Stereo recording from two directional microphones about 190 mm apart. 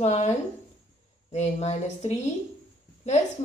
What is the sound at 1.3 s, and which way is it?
Speech, 35° left (ahead or behind).